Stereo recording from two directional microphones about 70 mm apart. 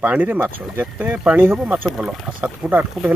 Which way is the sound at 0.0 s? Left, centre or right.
Right.